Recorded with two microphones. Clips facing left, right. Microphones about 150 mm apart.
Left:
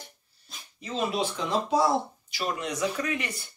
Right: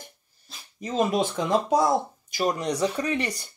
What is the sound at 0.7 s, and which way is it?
Speech, 45° right (ahead or behind).